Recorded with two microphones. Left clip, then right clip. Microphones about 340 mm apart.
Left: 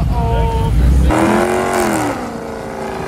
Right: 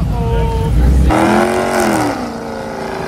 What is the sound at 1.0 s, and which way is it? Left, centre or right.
Vehicle, centre.